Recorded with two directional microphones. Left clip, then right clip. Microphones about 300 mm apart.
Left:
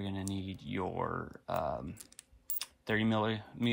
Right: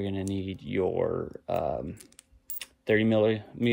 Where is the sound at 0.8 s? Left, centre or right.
Centre.